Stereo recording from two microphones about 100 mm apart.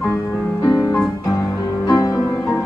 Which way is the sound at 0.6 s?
40° left (ahead or behind).